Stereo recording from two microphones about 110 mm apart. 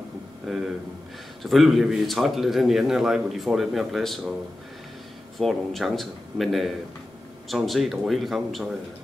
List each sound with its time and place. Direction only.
0.5 s a man's voice: centre (ahead or behind)
5.4 s a man's voice: centre (ahead or behind)